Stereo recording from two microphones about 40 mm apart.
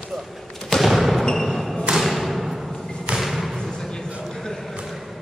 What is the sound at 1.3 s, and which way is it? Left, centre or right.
Thump, centre.